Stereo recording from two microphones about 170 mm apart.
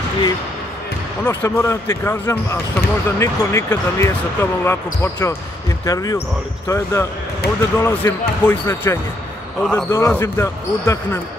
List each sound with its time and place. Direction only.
1.2 s speech: 15° left (ahead or behind)
9.8 s speech: 15° left (ahead or behind)